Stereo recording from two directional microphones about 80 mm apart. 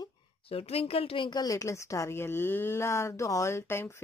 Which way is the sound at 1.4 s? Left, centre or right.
Left.